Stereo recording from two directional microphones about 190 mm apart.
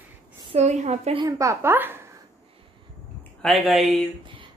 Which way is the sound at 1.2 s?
15° right (ahead or behind).